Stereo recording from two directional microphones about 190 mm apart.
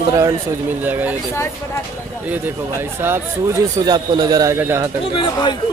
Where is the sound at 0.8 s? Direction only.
10° right (ahead or behind).